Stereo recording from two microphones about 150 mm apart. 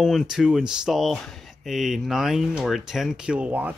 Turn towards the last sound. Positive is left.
turn(degrees=-10)  # may be behind; listen again after turning